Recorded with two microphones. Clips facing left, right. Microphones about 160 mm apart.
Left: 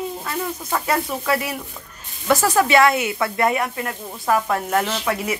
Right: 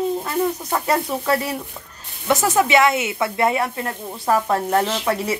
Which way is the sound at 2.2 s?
20° right (ahead or behind).